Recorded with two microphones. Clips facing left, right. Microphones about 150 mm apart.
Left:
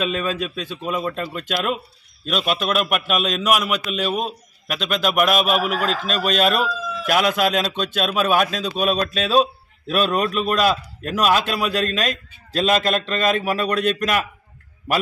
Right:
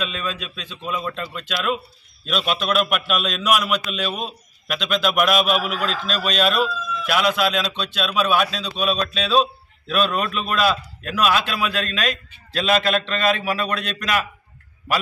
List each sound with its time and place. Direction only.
0.0 s a man's voice: 45° left (ahead or behind)
2.2 s a man's voice: 10° left (ahead or behind)
5.4 s a man's voice: 50° left (ahead or behind)